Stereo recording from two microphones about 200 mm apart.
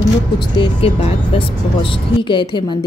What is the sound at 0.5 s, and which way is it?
Speech, 30° left (ahead or behind).